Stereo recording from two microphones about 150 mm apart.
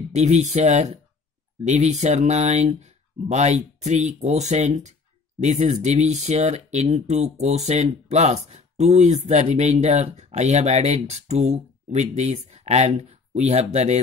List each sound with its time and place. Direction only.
0.1 s speech: 50° right (ahead or behind)